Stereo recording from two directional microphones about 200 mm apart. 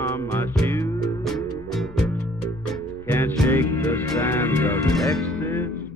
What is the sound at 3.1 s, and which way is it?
Music, 10° left (ahead or behind).